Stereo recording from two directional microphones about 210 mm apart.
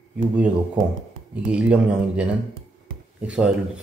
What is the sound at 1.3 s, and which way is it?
Speech, 5° right (ahead or behind).